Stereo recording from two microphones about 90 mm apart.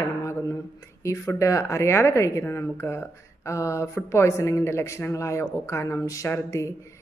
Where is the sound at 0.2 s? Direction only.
35° left (ahead or behind).